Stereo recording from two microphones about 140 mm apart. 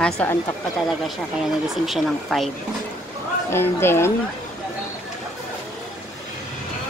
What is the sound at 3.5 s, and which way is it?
Speech, 15° left (ahead or behind).